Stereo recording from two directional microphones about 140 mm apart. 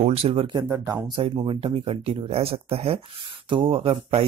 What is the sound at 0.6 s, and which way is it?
Speech, 20° right (ahead or behind).